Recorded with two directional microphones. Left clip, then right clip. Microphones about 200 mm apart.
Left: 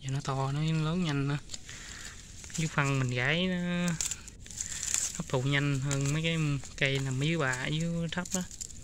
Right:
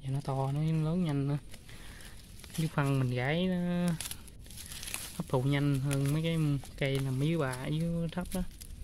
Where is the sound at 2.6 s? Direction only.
10° right (ahead or behind).